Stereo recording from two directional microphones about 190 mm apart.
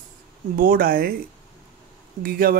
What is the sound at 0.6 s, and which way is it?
Speech, 50° right (ahead or behind).